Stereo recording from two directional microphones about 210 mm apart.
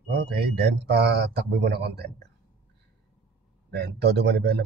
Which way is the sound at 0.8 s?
50° right (ahead or behind).